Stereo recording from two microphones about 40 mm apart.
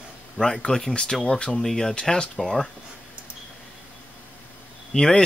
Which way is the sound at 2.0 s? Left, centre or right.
Left.